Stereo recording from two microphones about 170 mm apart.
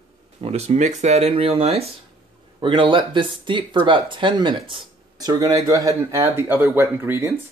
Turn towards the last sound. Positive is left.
turn(degrees=-15)  # may be behind; listen again after turning